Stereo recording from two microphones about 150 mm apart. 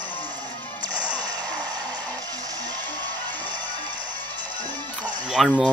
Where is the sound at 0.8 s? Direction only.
25° right (ahead or behind).